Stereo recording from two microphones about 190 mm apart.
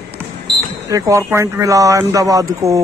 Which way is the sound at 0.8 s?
15° right (ahead or behind).